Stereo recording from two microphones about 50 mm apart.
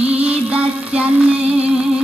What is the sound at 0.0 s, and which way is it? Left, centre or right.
Music, right.